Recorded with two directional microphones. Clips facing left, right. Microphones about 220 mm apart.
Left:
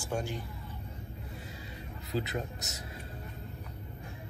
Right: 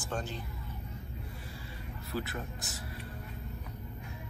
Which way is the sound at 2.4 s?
40° left (ahead or behind).